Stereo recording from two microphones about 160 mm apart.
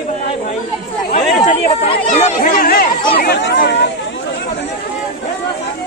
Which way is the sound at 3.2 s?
85° left.